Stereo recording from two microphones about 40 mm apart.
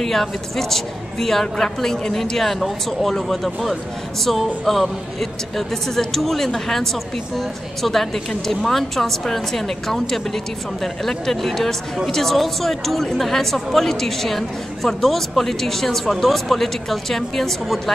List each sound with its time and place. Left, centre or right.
0.0 s a woman's voice: centre